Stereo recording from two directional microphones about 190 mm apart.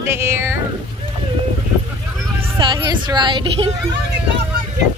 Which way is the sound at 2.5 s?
20° right (ahead or behind).